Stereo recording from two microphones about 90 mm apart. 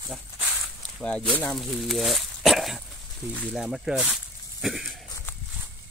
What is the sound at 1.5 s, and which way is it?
Speech, centre (ahead or behind).